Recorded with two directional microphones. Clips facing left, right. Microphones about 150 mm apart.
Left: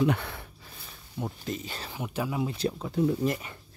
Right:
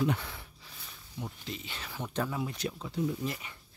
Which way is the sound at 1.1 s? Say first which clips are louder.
Left 7 dB; 50° left (ahead or behind).